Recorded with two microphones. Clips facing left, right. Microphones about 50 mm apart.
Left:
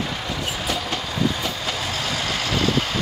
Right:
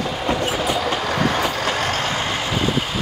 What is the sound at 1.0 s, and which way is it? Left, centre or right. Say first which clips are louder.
Train: right 5 dB; right.